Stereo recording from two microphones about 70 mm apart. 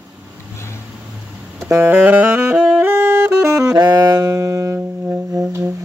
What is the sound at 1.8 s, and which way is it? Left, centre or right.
Saxophone, right.